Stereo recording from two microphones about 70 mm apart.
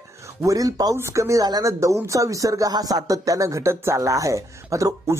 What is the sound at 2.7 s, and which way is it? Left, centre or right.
Speech, right.